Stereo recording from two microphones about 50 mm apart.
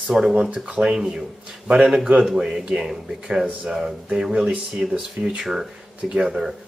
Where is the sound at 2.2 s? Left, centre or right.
Centre.